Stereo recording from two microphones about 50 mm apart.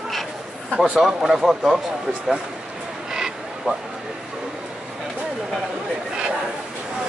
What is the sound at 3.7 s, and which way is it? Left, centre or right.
Speech, right.